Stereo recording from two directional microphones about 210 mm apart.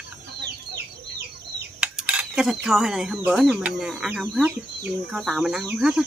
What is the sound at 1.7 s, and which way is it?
Speech, 5° right (ahead or behind).